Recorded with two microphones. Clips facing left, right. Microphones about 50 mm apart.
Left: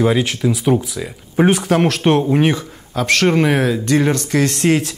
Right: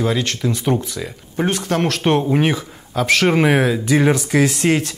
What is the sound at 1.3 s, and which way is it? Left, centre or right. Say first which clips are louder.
Speech: left 6 dB; left.